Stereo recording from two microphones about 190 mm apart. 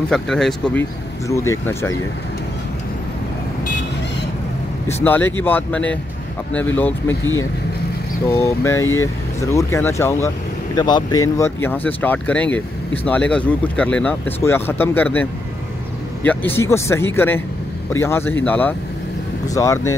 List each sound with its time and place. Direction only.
0.1 s speech: centre (ahead or behind)
1.3 s speech: 15° left (ahead or behind)
4.8 s speech: 10° left (ahead or behind)
8.3 s speech: 15° left (ahead or behind)
16.3 s speech: 10° left (ahead or behind)